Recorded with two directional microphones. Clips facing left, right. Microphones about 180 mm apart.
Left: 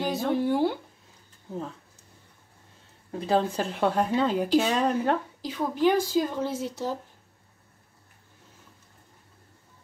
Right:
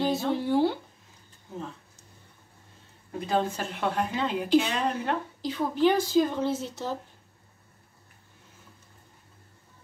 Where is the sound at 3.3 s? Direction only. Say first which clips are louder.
Left 3 dB; 35° left (ahead or behind).